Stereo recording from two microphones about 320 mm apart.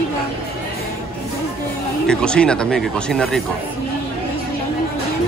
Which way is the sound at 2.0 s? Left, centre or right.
Centre.